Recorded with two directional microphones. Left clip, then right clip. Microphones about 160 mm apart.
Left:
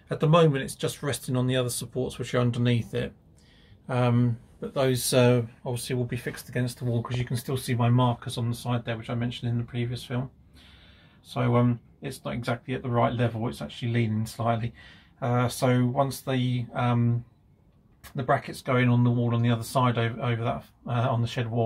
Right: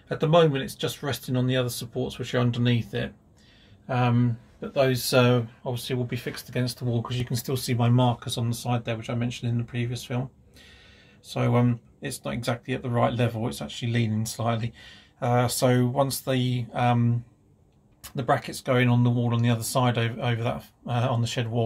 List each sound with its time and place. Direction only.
0.1 s speech: 10° right (ahead or behind); by 10.2 s 30° right (ahead or behind)
11.3 s speech: 30° right (ahead or behind)
18.1 s speech: 25° right (ahead or behind)